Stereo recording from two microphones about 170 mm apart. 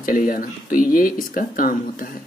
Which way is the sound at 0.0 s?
55° left (ahead or behind).